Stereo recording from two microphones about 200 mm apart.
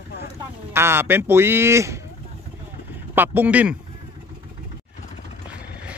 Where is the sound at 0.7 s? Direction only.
10° right (ahead or behind).